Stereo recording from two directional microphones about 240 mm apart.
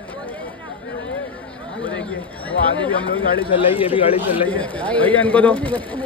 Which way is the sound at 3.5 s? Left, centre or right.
Left.